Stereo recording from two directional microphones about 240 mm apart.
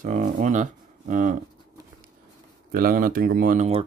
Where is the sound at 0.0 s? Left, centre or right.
Right.